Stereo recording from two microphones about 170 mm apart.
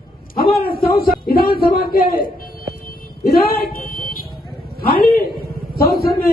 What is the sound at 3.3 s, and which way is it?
Buzzer, 60° left (ahead or behind).